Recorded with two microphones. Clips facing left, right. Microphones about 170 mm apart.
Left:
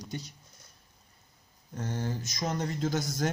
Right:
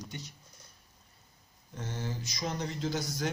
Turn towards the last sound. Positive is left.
turn(degrees=50)  # may be behind; listen again after turning